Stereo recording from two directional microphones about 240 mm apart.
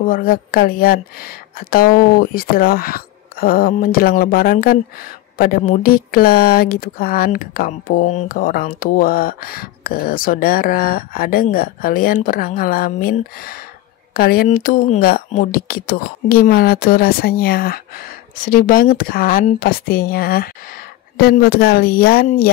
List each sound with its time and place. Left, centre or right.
0.0 s a woman's voice: left